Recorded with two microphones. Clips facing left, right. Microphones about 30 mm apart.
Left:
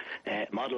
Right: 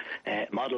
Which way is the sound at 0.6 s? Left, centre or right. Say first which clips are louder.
Right 2 dB; centre.